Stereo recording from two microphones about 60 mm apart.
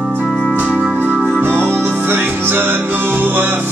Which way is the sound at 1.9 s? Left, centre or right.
Right.